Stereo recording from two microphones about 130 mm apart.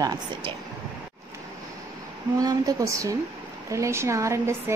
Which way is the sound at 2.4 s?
25° right (ahead or behind).